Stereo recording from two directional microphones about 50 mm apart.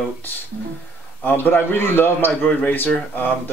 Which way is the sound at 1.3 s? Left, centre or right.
Left.